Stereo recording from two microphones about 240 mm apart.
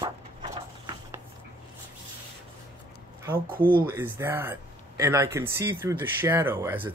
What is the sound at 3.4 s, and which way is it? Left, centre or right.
Speech, right.